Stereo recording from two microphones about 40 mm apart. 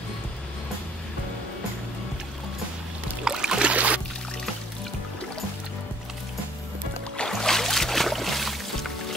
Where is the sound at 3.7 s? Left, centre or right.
Right.